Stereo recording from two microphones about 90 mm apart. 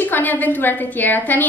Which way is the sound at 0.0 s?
20° left (ahead or behind).